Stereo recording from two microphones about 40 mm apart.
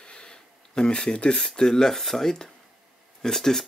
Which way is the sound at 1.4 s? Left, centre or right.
Centre.